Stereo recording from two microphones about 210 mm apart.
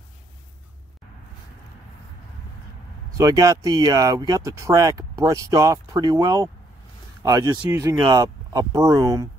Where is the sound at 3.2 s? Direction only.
15° right (ahead or behind).